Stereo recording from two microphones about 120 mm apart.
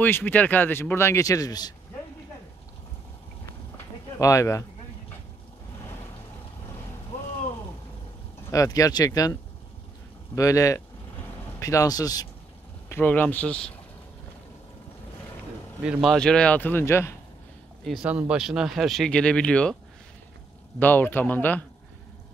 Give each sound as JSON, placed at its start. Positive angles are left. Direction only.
{"t": 0.0, "sound": "a man's voice", "side_deg": 15}
{"t": 4.2, "sound": "a man's voice", "side_deg": 25}
{"t": 8.5, "sound": "a man's voice", "side_deg": 30}
{"t": 12.9, "sound": "speech", "side_deg": 15}
{"t": 15.8, "sound": "speech", "side_deg": -5}
{"t": 18.0, "sound": "speech", "side_deg": -10}
{"t": 20.8, "sound": "speech", "side_deg": 15}